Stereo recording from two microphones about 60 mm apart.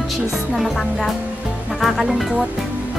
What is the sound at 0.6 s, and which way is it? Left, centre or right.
Speech, centre.